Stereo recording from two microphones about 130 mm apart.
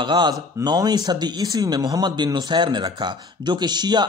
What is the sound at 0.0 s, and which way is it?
A man's voice, 35° right (ahead or behind).